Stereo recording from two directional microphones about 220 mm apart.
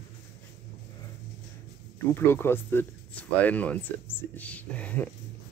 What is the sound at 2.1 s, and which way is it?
Speech, 10° left (ahead or behind).